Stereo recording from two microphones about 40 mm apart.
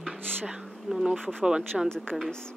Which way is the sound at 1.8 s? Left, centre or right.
Centre.